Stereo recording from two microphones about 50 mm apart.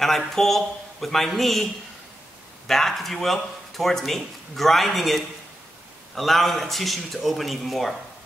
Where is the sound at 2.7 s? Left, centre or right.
Centre.